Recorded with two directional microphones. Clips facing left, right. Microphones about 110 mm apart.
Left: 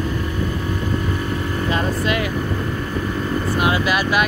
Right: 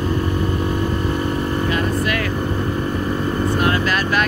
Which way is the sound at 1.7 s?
20° left (ahead or behind).